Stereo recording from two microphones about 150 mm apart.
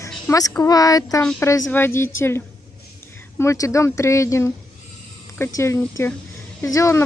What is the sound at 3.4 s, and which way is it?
Speech, 20° left (ahead or behind).